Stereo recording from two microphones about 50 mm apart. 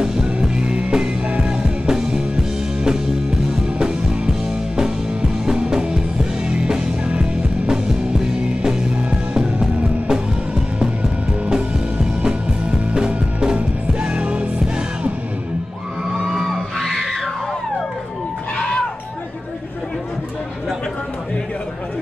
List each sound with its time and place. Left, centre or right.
0.0 s music: centre
11.4 s music: centre
16.1 s a sound: centre
16.3 s music: centre